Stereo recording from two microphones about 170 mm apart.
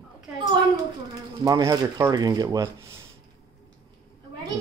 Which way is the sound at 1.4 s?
20° right (ahead or behind).